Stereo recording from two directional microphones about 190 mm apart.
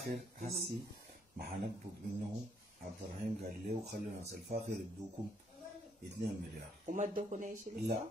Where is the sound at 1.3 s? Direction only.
55° right (ahead or behind).